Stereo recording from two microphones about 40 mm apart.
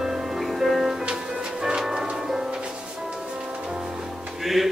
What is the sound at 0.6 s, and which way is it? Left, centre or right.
Music, centre.